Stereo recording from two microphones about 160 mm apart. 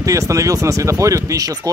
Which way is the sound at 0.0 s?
20° right (ahead or behind).